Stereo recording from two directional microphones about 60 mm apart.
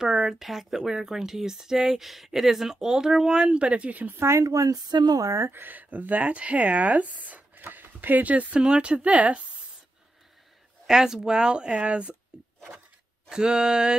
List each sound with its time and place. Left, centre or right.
0.0 s speech: centre; by 4.2 s right
4.2 s speech: right
5.4 s speech: right
10.9 s speech: centre
13.3 s speech: centre